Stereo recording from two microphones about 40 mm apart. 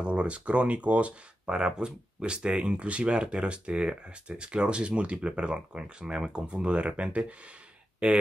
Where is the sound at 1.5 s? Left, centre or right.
Right.